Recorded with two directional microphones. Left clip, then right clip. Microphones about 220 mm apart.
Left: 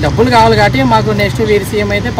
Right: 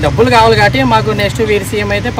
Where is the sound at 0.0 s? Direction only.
5° left (ahead or behind).